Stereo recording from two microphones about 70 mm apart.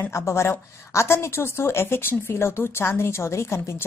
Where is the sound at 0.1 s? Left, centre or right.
Left.